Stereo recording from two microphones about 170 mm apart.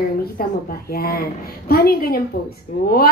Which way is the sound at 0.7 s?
65° left (ahead or behind).